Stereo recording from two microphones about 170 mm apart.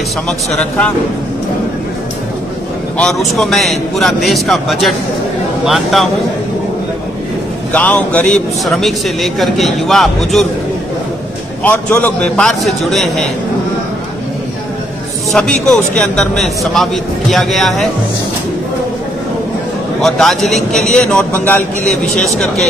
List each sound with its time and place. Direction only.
0.3 s a man's voice: 5° left (ahead or behind)
3.0 s a man's voice: centre (ahead or behind)
7.7 s a man's voice: 10° left (ahead or behind)
11.6 s a man's voice: 10° left (ahead or behind)
15.3 s a man's voice: 5° left (ahead or behind)
20.0 s a man's voice: centre (ahead or behind)
22.1 s speech: 40° left (ahead or behind)